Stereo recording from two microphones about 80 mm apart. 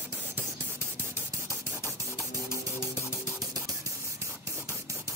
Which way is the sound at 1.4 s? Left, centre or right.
Right.